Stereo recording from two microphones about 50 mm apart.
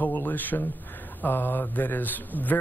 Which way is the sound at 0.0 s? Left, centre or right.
Left.